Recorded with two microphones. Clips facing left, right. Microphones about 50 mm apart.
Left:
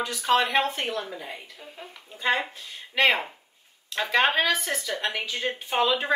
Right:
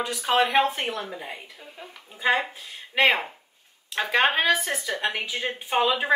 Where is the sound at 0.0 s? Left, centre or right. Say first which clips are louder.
Even; centre.